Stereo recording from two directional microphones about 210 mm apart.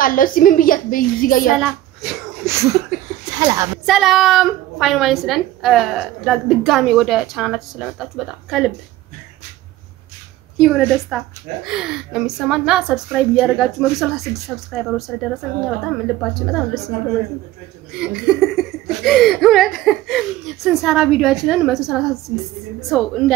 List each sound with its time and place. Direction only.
0.0 s a woman's voice: 40° left (ahead or behind)
1.5 s a child's voice: centre (ahead or behind)
2.4 s a sound: 15° right (ahead or behind)
3.3 s speech: 20° right (ahead or behind)
3.8 s a woman's voice: centre (ahead or behind)
10.6 s a woman's voice: centre (ahead or behind)
18.0 s a woman's voice: 5° right (ahead or behind)